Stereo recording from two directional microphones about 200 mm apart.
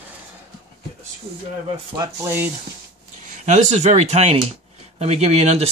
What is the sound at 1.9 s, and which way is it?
Speech, 20° right (ahead or behind).